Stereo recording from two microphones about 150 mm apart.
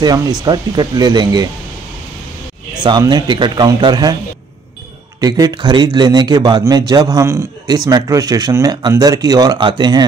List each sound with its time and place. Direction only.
0.0 s a man's voice: 25° right (ahead or behind)
2.8 s a man's voice: 30° right (ahead or behind)
5.2 s a man's voice: 25° right (ahead or behind)